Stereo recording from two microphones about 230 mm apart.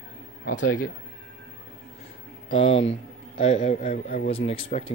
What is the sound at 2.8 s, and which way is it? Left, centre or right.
A man's voice, left.